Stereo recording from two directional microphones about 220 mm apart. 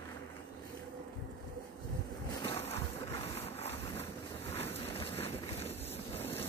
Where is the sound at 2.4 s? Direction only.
25° left (ahead or behind).